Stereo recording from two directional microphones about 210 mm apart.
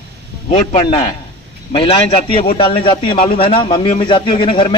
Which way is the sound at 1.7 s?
25° left (ahead or behind).